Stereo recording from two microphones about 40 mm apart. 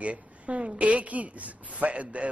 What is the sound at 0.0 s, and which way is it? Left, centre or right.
A man's voice, right.